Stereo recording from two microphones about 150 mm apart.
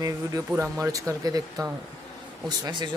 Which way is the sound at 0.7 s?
20° right (ahead or behind).